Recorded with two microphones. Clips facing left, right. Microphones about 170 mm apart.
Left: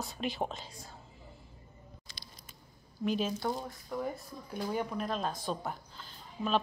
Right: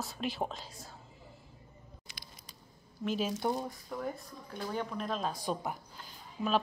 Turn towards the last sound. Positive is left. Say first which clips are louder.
# even
turn(degrees=-10)  # may be behind; listen again after turning